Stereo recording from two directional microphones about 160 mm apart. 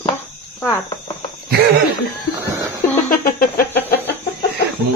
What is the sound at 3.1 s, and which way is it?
Bird, 65° left (ahead or behind).